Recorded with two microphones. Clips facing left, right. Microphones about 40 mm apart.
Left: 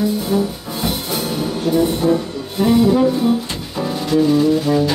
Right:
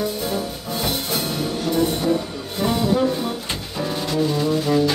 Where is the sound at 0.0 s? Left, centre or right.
Centre.